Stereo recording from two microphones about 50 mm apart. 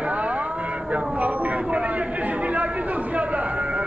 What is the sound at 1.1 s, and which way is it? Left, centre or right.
Vehicle, right.